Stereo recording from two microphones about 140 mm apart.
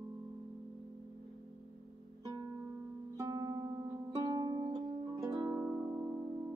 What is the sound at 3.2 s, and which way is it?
Music, 25° right (ahead or behind).